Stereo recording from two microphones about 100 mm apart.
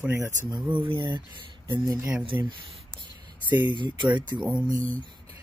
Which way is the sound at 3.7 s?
50° right (ahead or behind).